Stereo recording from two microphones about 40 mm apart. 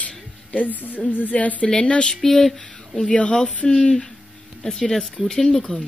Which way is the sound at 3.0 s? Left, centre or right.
Left.